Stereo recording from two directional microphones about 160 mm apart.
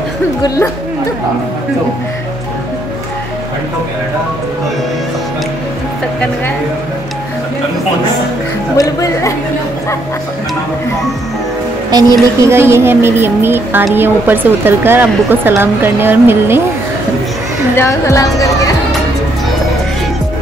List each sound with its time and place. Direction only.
8.7 s a woman's voice: 20° left (ahead or behind)
11.9 s a woman's voice: 20° right (ahead or behind)
17.7 s a woman's voice: 20° left (ahead or behind)